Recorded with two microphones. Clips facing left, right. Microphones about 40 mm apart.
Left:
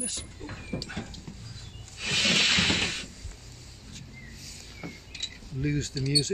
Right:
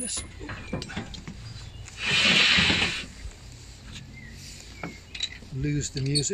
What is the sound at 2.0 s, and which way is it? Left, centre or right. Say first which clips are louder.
Rub: right 4 dB; right.